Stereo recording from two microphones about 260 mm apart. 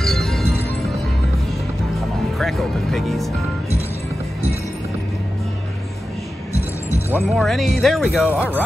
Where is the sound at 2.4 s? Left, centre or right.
Centre.